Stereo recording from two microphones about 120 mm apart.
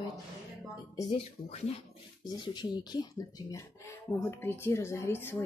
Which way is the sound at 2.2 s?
40° left (ahead or behind).